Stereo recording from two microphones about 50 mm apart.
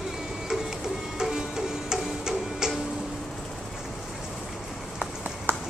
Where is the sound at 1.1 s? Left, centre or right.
Centre.